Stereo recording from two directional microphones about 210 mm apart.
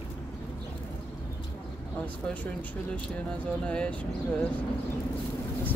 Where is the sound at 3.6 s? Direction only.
5° left (ahead or behind).